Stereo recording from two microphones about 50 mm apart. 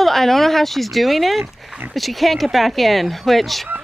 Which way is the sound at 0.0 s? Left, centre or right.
Centre.